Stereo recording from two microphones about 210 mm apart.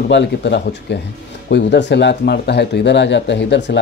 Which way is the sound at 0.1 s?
55° left (ahead or behind).